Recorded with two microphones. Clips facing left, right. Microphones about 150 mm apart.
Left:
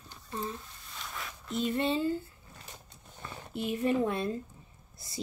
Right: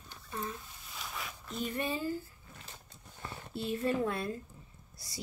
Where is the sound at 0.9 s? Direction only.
Centre (ahead or behind).